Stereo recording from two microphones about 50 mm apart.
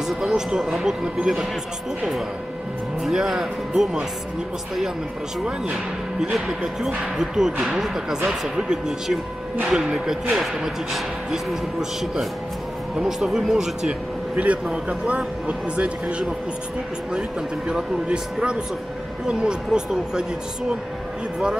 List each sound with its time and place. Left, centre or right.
0.0 s speech: centre
3.0 s speech: centre
7.2 s speech: centre
13.0 s speech: centre
14.3 s speech: right
17.6 s speech: centre